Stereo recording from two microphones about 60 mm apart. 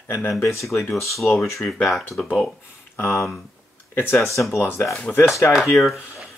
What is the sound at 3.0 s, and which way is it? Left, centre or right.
Speech, left.